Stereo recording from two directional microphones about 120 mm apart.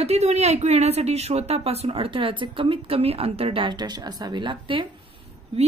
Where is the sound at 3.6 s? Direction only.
35° right (ahead or behind).